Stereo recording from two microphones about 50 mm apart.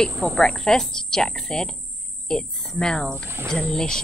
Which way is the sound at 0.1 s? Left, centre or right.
Centre.